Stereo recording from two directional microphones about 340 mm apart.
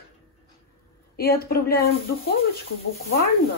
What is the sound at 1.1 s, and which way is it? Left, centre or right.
Speech, left.